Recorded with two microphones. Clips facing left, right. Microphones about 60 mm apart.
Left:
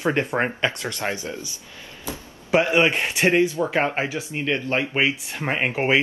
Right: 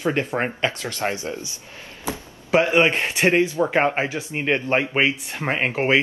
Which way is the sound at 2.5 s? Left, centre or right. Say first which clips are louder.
Right 1 dB; right.